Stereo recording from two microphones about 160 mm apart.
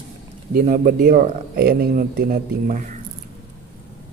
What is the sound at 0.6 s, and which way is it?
Speech, 55° right (ahead or behind).